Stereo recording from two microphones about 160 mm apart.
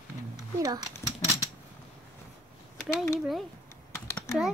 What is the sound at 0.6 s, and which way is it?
Speech, 20° right (ahead or behind).